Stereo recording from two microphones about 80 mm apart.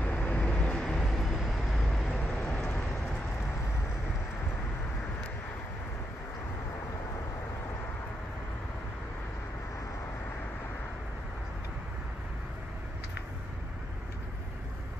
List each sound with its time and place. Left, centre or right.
0.0 s vehicle: left; by 2.1 s centre
2.4 s vehicle: centre